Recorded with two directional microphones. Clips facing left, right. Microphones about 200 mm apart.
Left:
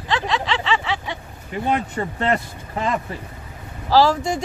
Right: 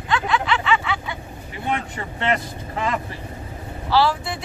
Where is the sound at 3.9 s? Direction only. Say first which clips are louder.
Left 4 dB; 40° left (ahead or behind).